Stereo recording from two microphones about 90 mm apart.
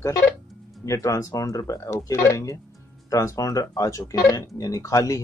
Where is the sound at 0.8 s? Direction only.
35° left (ahead or behind).